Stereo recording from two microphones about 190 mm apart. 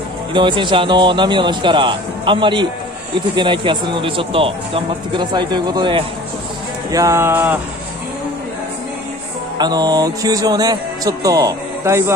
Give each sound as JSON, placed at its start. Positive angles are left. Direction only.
{"t": 0.3, "sound": "speech", "side_deg": -25}
{"t": 9.6, "sound": "speech", "side_deg": -20}